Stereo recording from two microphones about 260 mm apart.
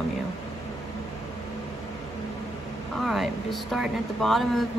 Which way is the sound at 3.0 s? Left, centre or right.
Centre.